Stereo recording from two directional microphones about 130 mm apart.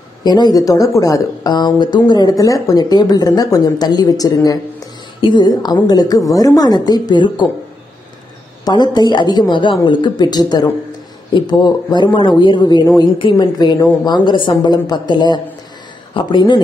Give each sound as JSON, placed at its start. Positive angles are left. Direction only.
{"t": 0.2, "sound": "a woman's voice", "side_deg": 30}
{"t": 8.6, "sound": "a woman's voice", "side_deg": 30}